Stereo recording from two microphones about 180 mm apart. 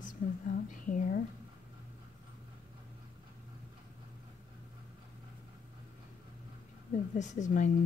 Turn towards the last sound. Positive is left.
turn(degrees=45)  # may be behind; listen again after turning